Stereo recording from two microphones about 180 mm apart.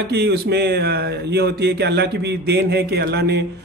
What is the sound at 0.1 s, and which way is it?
Speech, 60° right (ahead or behind).